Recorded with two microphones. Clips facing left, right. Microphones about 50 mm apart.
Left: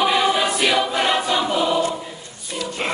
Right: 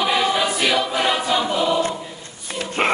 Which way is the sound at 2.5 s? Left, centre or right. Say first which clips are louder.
Right 4 dB; right.